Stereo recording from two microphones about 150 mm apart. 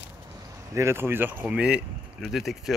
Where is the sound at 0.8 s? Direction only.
15° right (ahead or behind); by 2.7 s centre (ahead or behind).